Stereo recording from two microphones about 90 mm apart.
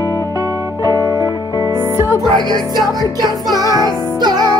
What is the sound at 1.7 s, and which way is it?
Music, 30° right (ahead or behind).